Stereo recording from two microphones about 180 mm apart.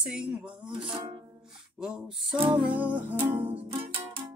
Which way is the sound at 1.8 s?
5° right (ahead or behind).